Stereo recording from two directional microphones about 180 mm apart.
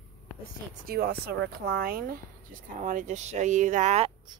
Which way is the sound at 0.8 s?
60° right (ahead or behind).